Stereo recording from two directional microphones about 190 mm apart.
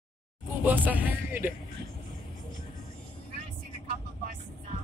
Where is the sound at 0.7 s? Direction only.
10° right (ahead or behind).